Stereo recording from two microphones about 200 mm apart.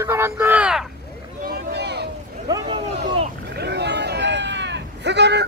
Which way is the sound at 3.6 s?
55° right (ahead or behind).